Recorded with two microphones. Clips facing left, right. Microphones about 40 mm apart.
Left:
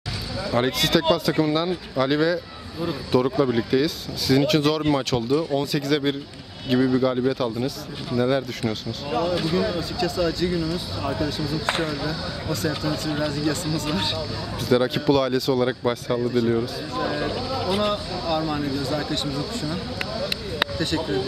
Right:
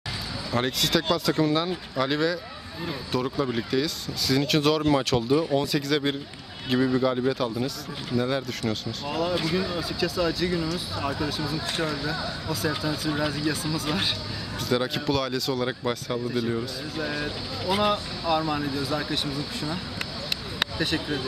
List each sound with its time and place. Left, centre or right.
0.5 s speech: centre